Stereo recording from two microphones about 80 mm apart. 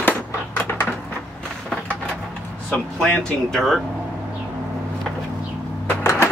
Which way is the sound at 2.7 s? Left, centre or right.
Centre.